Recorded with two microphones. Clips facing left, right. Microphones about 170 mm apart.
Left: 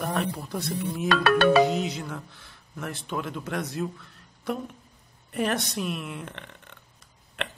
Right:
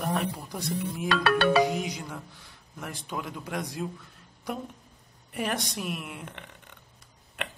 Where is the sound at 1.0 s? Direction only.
50° left (ahead or behind).